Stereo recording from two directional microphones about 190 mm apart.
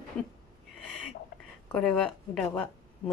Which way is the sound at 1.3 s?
60° left (ahead or behind).